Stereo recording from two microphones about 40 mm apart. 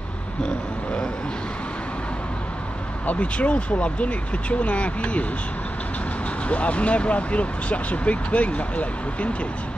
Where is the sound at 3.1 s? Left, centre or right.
Left.